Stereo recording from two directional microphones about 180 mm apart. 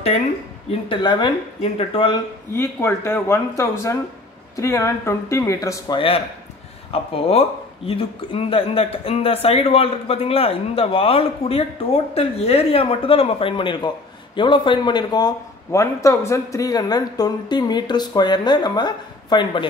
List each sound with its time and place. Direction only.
0.8 s a man's voice: 25° left (ahead or behind)
2.5 s a man's voice: 15° left (ahead or behind)